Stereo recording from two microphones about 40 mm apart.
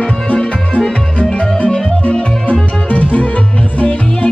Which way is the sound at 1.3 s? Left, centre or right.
Left.